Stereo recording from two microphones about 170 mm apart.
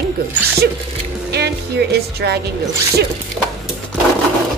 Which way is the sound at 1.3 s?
75° right (ahead or behind).